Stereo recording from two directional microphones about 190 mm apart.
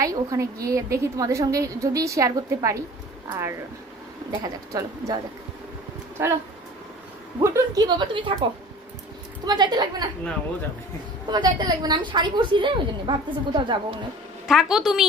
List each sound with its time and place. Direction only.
0.0 s a woman's voice: 20° right (ahead or behind)
9.5 s a woman's voice: 20° right (ahead or behind)
11.2 s a woman's voice: 25° right (ahead or behind)
14.5 s a woman's voice: centre (ahead or behind)